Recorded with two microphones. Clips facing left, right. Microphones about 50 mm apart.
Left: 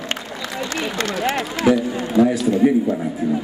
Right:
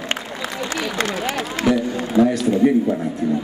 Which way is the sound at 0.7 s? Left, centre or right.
Centre.